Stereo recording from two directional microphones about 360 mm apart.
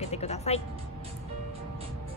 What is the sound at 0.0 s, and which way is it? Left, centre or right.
Music, centre.